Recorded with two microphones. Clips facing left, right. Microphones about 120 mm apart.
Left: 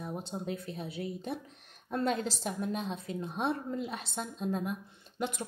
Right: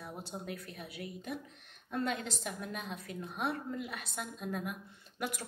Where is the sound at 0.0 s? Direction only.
20° left (ahead or behind).